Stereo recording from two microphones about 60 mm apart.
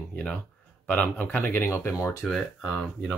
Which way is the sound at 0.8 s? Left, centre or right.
Left.